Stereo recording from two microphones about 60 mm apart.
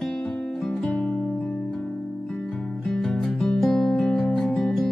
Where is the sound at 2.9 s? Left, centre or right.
Centre.